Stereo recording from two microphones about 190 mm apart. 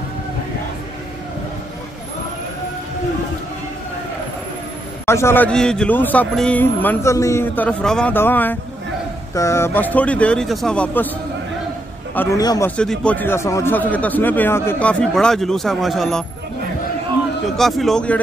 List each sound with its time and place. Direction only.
5.0 s a man's voice: 15° left (ahead or behind)
12.2 s a man's voice: 15° left (ahead or behind)
12.7 s a man's voice: 5° left (ahead or behind)
17.6 s a man's voice: centre (ahead or behind)